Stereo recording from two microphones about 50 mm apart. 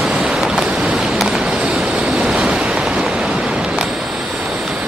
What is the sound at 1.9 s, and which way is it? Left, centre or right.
Waves, right.